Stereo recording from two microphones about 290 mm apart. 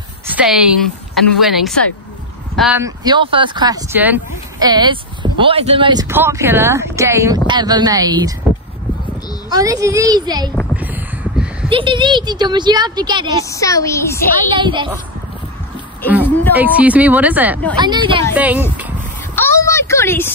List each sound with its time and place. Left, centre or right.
0.3 s a woman's voice: centre
9.5 s speech: centre
10.5 s a sound: centre
11.7 s speech: centre
13.5 s a woman's voice: centre
14.6 s speech: centre
16.5 s speech: centre
18.3 s speech: centre
19.3 s a sound: centre